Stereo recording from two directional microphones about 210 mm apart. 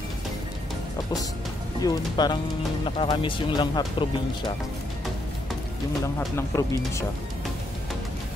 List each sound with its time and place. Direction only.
1.8 s speech: 20° left (ahead or behind)
6.1 s speech: 15° left (ahead or behind)